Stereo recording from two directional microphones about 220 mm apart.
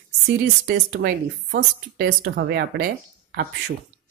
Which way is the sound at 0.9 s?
50° right (ahead or behind).